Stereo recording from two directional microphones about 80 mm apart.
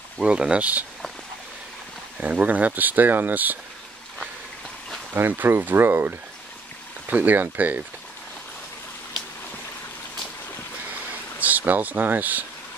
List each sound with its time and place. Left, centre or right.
0.2 s speech: centre
2.1 s speech: centre
5.1 s speech: right
11.4 s speech: right